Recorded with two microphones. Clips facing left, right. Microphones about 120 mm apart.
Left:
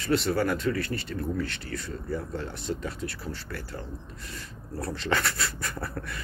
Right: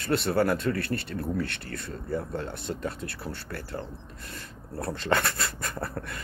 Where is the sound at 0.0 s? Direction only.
55° right (ahead or behind).